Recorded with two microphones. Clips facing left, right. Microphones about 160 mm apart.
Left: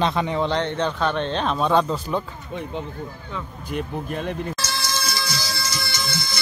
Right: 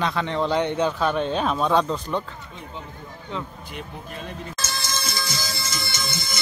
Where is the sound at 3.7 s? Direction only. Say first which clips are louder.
Left 12 dB; 55° left (ahead or behind).